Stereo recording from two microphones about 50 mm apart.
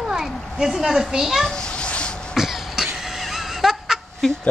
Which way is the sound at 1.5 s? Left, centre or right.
Centre.